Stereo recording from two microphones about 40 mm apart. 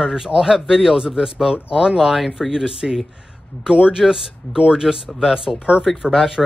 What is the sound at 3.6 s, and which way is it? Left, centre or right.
Speech, right.